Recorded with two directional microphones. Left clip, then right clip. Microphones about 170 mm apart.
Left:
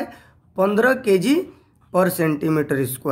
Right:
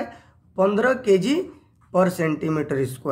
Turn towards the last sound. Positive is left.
turn(degrees=25)  # may be behind; listen again after turning